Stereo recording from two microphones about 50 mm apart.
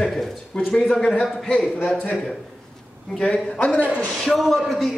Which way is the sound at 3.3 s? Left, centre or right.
Left.